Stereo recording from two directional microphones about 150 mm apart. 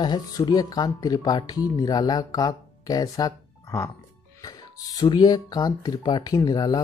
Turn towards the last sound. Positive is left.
turn(degrees=25)  # may be behind; listen again after turning